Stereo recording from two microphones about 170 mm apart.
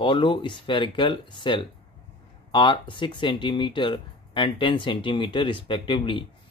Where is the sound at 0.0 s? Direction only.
30° left (ahead or behind).